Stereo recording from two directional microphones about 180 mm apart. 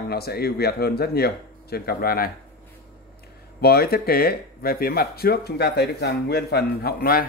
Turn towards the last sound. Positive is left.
turn(degrees=60)  # may be behind; listen again after turning